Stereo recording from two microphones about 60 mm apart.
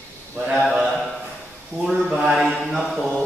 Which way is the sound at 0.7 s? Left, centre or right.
Centre.